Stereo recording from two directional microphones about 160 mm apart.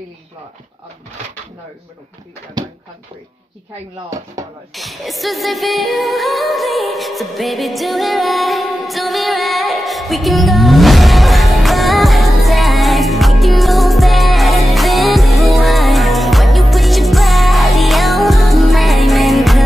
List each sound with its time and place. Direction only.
2.6 s speech: 25° right (ahead or behind)
4.7 s music: centre (ahead or behind)